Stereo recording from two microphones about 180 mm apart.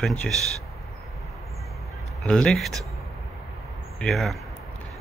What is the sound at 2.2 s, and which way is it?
Speech, 5° left (ahead or behind).